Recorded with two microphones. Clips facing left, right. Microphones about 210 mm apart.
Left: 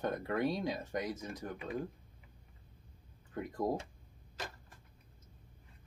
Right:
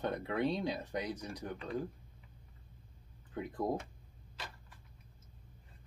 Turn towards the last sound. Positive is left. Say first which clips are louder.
# left 4 dB
turn(degrees=45)  # may be behind; listen again after turning